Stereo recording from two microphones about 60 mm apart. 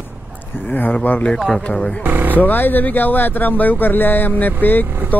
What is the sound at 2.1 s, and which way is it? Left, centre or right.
Speech, right.